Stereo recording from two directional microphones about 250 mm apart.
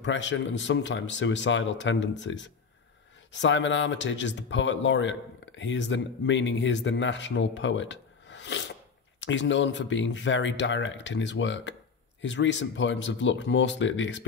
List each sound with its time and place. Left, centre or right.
0.0 s speech: left